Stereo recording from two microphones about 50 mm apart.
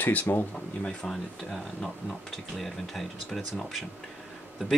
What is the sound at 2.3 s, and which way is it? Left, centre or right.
Speech, centre.